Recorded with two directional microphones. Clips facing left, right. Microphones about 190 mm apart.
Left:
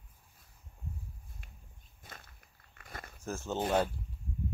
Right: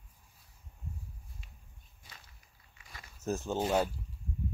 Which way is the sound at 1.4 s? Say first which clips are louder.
Left 2 dB; 55° left (ahead or behind).